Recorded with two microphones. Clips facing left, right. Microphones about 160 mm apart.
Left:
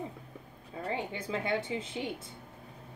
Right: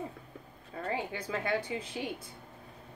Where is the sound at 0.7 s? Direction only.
20° left (ahead or behind).